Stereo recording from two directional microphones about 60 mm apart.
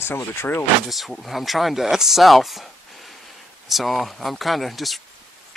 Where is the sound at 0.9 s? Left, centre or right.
Centre.